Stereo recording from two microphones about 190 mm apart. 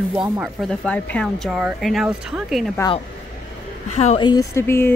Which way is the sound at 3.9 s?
35° left (ahead or behind).